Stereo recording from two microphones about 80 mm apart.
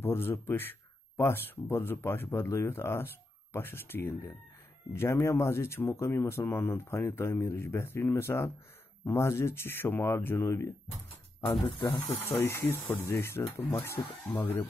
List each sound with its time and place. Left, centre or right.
0.0 s speech: left
12.3 s speech: left